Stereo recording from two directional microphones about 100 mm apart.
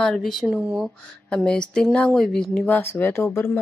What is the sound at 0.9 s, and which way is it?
Speech, 10° left (ahead or behind).